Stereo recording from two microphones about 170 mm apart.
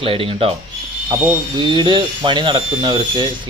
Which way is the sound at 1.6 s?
30° right (ahead or behind).